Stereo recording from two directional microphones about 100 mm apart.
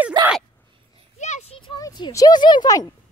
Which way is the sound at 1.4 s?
90° left.